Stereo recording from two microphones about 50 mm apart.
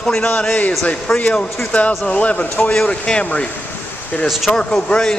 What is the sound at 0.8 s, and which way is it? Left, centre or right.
Speech, left.